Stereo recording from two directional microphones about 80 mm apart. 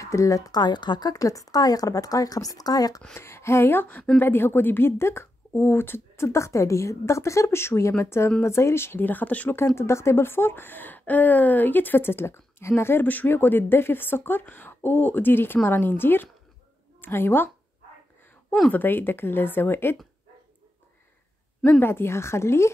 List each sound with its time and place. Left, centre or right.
0.0 s speech: left
0.5 s speech: left
3.2 s speech: left
9.6 s speech: left
18.7 s speech: left
21.6 s speech: left